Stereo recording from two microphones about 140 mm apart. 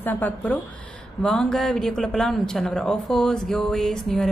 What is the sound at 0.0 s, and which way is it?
A woman's voice, 15° left (ahead or behind).